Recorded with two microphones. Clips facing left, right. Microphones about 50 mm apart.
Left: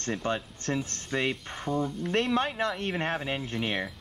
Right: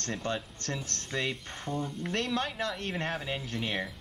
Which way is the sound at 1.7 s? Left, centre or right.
Centre.